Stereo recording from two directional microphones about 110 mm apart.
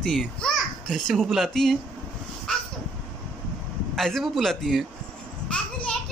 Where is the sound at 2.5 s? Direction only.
5° left (ahead or behind).